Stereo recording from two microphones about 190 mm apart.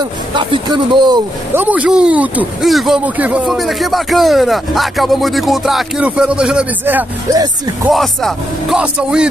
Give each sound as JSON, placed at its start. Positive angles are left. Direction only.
{"t": 0.3, "sound": "speech", "side_deg": -25}
{"t": 1.5, "sound": "speech", "side_deg": -10}